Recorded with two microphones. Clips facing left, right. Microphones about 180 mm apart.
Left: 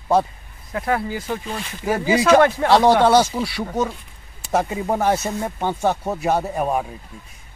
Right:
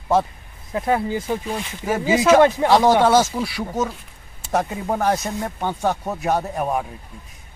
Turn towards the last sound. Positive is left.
turn(degrees=0)  # may be behind; listen again after turning